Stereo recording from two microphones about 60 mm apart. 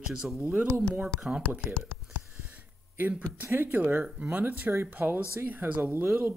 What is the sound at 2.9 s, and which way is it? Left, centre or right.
Speech, right.